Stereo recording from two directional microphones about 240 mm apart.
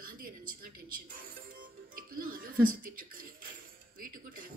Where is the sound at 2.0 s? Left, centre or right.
Right.